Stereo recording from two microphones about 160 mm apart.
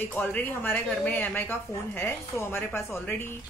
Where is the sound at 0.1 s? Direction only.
10° left (ahead or behind).